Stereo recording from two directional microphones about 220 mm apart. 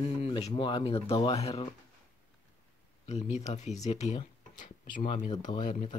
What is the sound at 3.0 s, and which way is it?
Speech, 30° left (ahead or behind).